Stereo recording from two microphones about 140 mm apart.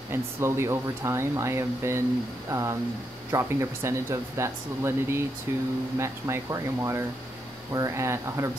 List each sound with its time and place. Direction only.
0.1 s speech: 20° right (ahead or behind)